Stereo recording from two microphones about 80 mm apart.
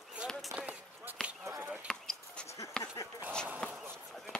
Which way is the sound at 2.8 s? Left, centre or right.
Left.